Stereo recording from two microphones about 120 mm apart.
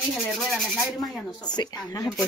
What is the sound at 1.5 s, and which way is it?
Speech, 35° left (ahead or behind).